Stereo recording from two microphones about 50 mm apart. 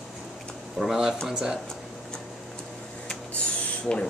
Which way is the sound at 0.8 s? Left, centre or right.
Centre.